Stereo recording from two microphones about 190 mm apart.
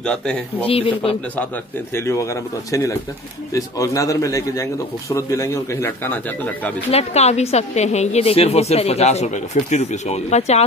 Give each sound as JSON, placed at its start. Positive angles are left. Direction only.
{"t": 0.0, "sound": "speech", "side_deg": 5}
{"t": 0.7, "sound": "speech", "side_deg": 30}
{"t": 2.0, "sound": "speech", "side_deg": 15}
{"t": 6.9, "sound": "a woman's voice", "side_deg": 35}